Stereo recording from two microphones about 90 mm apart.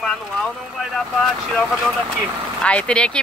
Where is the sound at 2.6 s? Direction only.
10° left (ahead or behind).